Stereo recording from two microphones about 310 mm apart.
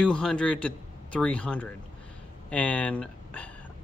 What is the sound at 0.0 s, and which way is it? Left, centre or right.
A man's voice, centre.